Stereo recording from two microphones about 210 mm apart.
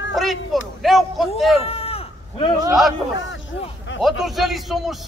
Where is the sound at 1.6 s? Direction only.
30° left (ahead or behind).